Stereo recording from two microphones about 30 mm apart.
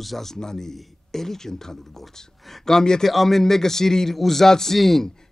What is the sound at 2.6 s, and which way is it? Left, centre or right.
Speech, centre.